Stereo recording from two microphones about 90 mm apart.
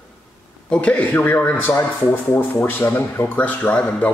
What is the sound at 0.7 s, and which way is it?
Speech, 15° left (ahead or behind).